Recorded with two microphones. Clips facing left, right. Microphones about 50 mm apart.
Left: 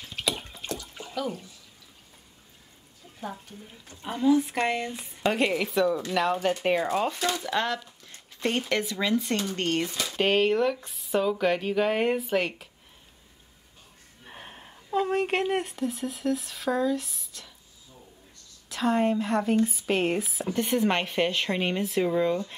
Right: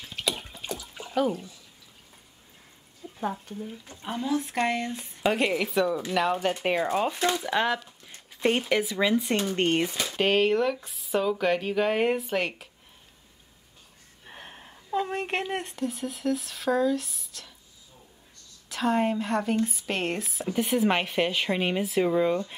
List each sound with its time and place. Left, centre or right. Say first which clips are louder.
0.0 s bathtub: even; centre
3.0 s a sound: right 9 dB; centre
3.9 s speech: left 6 dB; centre
10.1 s speech: even; centre
14.2 s speech: even; centre
18.7 s speech: left 1 dB; centre